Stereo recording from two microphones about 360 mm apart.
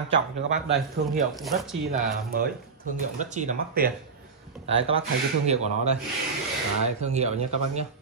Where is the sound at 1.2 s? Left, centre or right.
Centre.